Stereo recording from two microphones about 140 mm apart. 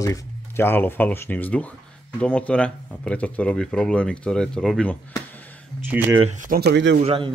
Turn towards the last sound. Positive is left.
turn(degrees=-40)  # may be behind; listen again after turning